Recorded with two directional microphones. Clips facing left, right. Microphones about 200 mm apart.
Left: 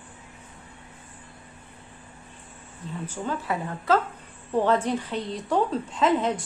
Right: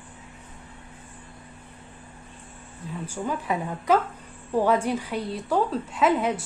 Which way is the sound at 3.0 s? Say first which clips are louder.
Right 1 dB; 10° right (ahead or behind).